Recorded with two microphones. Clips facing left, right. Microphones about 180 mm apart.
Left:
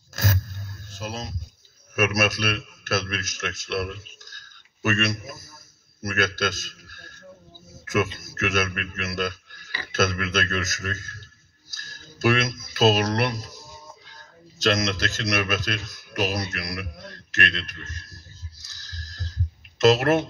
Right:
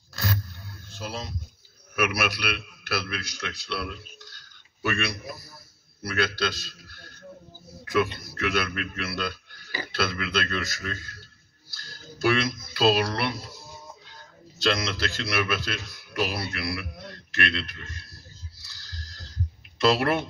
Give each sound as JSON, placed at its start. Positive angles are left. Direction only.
{"t": 0.1, "sound": "vehicle", "side_deg": 45}
{"t": 2.0, "sound": "a man's voice", "side_deg": 45}
{"t": 7.8, "sound": "a sound", "side_deg": 45}
{"t": 8.2, "sound": "a man's voice", "side_deg": 45}
{"t": 11.7, "sound": "a sound", "side_deg": 45}
{"t": 12.7, "sound": "a man's voice", "side_deg": 45}
{"t": 14.6, "sound": "a man's voice", "side_deg": 45}
{"t": 17.8, "sound": "a sound", "side_deg": 45}
{"t": 19.8, "sound": "a man's voice", "side_deg": 45}